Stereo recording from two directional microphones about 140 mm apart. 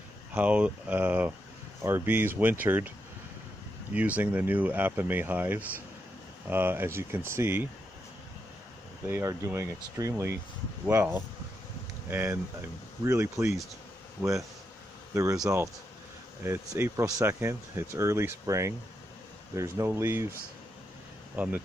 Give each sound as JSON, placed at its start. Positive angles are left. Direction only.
{"t": 0.3, "sound": "speech", "side_deg": -10}
{"t": 3.9, "sound": "speech", "side_deg": -10}
{"t": 9.0, "sound": "speech", "side_deg": -20}
{"t": 15.1, "sound": "speech", "side_deg": -25}
{"t": 21.4, "sound": "speech", "side_deg": -15}